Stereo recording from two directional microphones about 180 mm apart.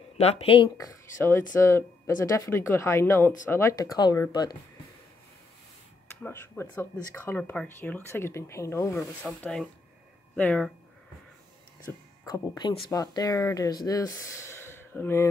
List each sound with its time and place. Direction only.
0.2 s speech: 35° left (ahead or behind)
6.2 s speech: 15° left (ahead or behind)
9.4 s speech: 5° left (ahead or behind)
11.8 s speech: 20° left (ahead or behind)